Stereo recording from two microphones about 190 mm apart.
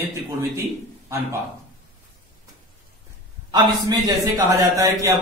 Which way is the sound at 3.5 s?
25° right (ahead or behind).